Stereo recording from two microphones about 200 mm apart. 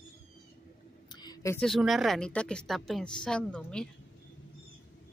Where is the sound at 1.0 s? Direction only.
20° left (ahead or behind).